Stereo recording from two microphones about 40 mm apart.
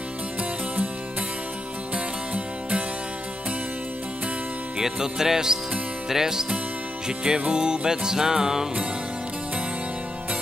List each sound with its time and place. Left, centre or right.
4.7 s music: centre